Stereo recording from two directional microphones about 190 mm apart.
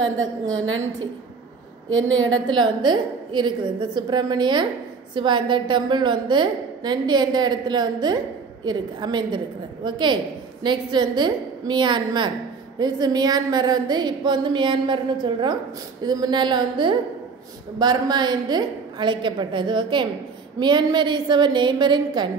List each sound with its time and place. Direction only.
0.0 s a woman's voice: 90° right
1.9 s a woman's voice: 90° right
2.4 s a woman's voice: 25° right (ahead or behind)